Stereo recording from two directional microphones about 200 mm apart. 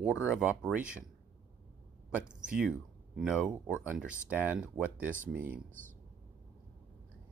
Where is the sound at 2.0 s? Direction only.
5° right (ahead or behind).